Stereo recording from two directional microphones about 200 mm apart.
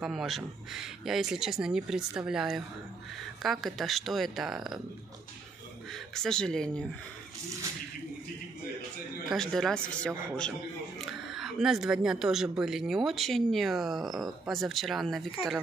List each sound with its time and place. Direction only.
0.0 s speech: centre (ahead or behind)
5.9 s speech: centre (ahead or behind)
9.3 s speech: centre (ahead or behind)